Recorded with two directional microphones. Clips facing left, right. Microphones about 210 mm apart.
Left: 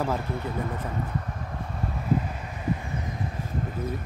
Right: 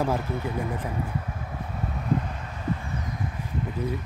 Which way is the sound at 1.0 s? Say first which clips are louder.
Even; 5° right (ahead or behind).